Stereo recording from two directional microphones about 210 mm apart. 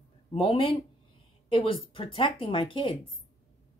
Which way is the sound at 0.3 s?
25° left (ahead or behind).